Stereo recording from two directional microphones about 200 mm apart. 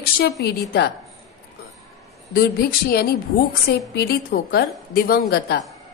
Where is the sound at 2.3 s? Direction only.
50° left (ahead or behind).